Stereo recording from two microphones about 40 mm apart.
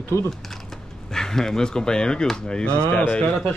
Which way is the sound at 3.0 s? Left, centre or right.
Left.